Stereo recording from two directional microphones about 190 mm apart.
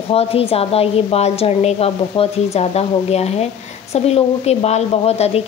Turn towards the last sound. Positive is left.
turn(degrees=35)  # may be behind; listen again after turning